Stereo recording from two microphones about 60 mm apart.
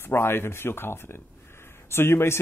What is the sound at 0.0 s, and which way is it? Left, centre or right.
Speech, left.